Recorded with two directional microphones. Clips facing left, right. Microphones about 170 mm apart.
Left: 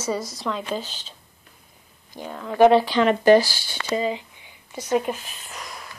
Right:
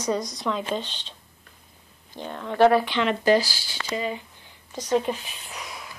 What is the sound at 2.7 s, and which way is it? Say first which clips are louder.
Speech: left 4 dB; 40° left (ahead or behind).